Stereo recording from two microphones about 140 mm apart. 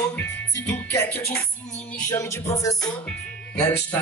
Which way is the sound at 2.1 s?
25° left (ahead or behind).